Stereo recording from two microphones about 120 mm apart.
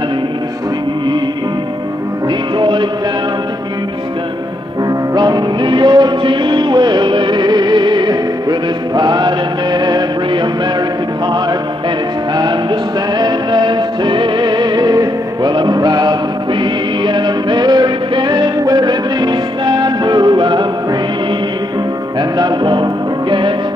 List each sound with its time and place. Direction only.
2.6 s music: 40° right (ahead or behind)
5.1 s music: 35° right (ahead or behind)
13.2 s music: 40° right (ahead or behind)
22.4 s music: 40° right (ahead or behind)